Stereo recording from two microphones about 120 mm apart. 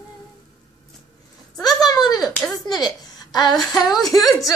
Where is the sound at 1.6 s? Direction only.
35° left (ahead or behind).